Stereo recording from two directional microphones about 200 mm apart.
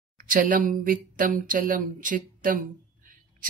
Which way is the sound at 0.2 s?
45° right (ahead or behind).